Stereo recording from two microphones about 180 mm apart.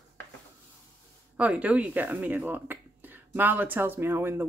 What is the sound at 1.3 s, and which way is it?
Speech, 5° right (ahead or behind).